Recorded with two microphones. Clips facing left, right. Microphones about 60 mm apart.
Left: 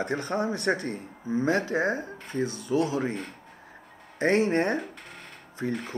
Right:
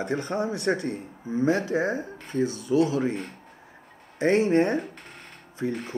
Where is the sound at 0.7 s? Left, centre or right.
Centre.